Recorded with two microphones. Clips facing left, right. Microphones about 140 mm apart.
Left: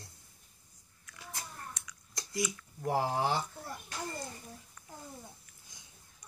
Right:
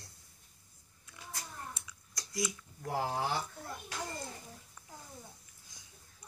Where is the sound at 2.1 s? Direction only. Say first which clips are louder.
Left 4 dB; 25° left (ahead or behind).